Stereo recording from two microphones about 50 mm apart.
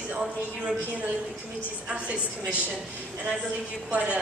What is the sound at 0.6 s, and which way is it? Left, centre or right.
A woman's voice, right.